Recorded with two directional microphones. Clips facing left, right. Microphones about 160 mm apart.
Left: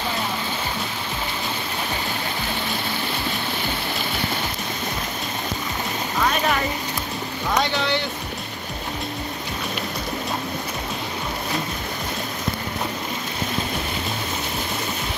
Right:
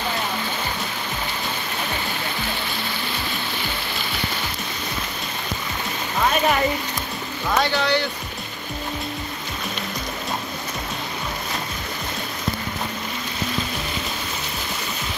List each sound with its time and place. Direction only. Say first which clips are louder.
7.5 s speech: right 2 dB; 20° left (ahead or behind)